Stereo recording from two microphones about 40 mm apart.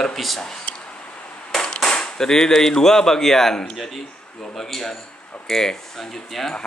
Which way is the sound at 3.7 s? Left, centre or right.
Centre.